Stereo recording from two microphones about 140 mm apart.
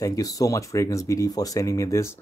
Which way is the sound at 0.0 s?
25° left (ahead or behind).